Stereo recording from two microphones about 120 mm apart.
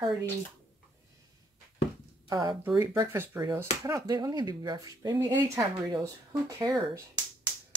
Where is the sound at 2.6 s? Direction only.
20° right (ahead or behind).